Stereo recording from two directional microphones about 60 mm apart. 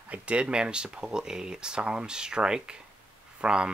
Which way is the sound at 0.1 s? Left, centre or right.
Centre.